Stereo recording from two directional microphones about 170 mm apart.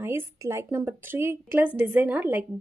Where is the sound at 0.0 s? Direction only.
15° right (ahead or behind).